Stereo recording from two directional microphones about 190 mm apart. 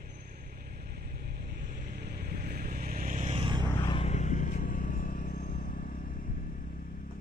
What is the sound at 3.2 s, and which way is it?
Vehicle, 25° right (ahead or behind).